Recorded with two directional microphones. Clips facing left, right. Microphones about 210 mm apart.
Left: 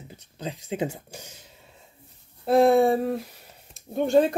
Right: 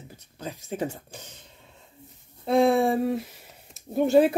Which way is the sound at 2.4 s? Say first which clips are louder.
Left 3 dB; centre (ahead or behind).